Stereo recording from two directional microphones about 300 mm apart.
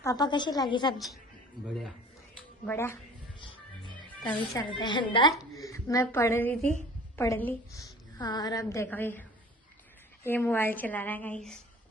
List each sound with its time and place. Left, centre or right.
0.0 s a woman's voice: centre
1.7 s a woman's voice: centre
3.3 s music: centre
4.1 s a woman's voice: centre
10.2 s a woman's voice: centre